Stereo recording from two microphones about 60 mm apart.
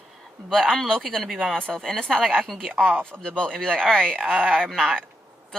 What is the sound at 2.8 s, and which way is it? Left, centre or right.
Speech, right.